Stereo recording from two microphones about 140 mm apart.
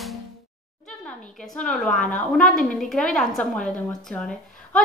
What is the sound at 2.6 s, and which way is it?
A woman's voice, 5° left (ahead or behind).